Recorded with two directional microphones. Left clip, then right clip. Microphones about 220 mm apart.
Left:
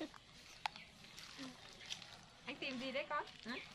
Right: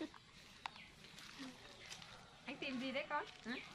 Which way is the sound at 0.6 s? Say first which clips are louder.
Left 5 dB; 50° left (ahead or behind).